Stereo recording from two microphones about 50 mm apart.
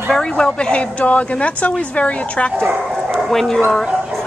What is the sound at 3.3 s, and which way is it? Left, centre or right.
Speech, centre.